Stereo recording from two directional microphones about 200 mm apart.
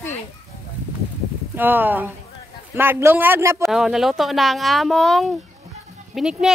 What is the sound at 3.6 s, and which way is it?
Speech, centre (ahead or behind).